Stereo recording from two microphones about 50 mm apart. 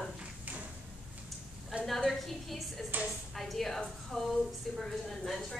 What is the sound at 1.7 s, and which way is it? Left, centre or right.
Speech, right.